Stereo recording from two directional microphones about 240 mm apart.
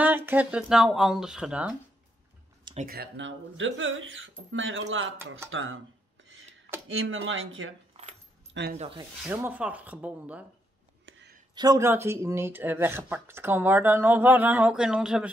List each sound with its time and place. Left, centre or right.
0.0 s speech: centre
2.6 s a sound: right
2.9 s speech: right
6.9 s speech: right
7.9 s keys jangling: right
8.7 s speech: right
9.3 s speech: centre
11.1 s a sound: right
11.5 s speech: centre